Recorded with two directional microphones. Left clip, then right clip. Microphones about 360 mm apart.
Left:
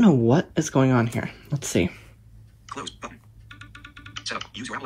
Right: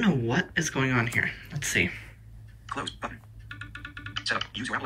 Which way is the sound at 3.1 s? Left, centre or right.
Left.